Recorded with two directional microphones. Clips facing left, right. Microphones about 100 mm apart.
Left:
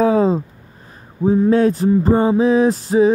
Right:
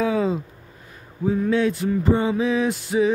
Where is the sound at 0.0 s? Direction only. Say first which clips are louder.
Left 7 dB; 35° left (ahead or behind).